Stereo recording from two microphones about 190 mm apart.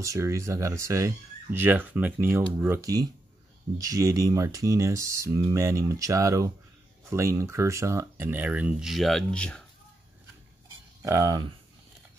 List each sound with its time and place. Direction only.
0.0 s speech: 15° right (ahead or behind); by 9.6 s 5° left (ahead or behind)
11.1 s speech: 15° right (ahead or behind)